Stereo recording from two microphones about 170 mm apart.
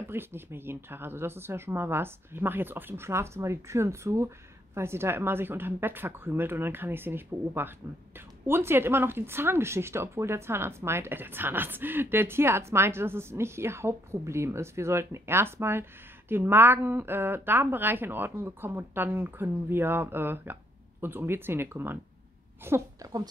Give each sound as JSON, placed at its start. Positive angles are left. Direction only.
{"t": 0.1, "sound": "speech", "side_deg": -15}